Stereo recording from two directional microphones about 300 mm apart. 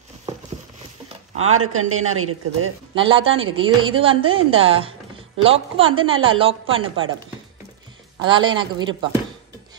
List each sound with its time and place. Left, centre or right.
1.3 s speech: right
2.9 s speech: centre
3.3 s a woman's voice: right
3.5 s a woman's voice: centre
8.2 s a woman's voice: centre